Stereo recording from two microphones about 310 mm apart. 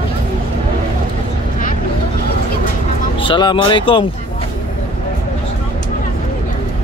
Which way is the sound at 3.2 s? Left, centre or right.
Centre.